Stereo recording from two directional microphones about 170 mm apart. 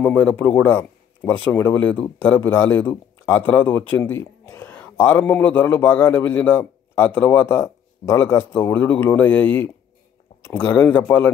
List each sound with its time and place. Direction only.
0.0 s a man's voice: 10° left (ahead or behind)